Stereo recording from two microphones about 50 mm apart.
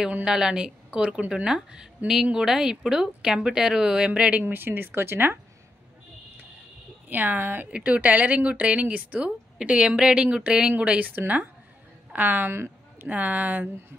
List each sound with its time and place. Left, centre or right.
0.2 s a woman's voice: centre
4.1 s a woman's voice: right
4.5 s speech: right
7.1 s a woman's voice: right
7.7 s a woman's voice: right
12.5 s a sound: right
13.1 s a woman's voice: right